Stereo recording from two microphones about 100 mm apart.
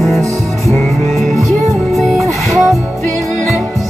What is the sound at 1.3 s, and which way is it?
Music, centre (ahead or behind).